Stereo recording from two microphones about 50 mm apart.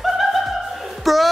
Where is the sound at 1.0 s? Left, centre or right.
Centre.